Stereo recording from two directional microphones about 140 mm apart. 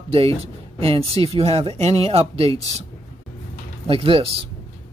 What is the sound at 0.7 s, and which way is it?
Speech, 45° right (ahead or behind).